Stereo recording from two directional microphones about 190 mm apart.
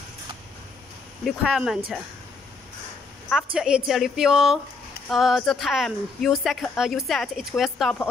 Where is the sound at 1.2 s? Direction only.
5° right (ahead or behind).